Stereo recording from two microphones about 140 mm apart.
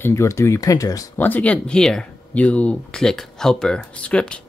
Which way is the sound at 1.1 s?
10° left (ahead or behind).